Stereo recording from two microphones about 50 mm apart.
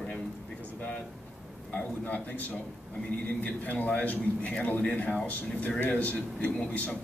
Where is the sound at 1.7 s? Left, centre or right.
Left.